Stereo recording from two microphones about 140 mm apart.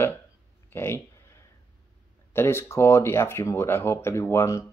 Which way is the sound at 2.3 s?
15° left (ahead or behind).